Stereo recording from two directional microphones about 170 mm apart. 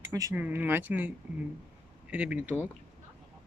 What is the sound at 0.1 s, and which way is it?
Speech, 15° right (ahead or behind).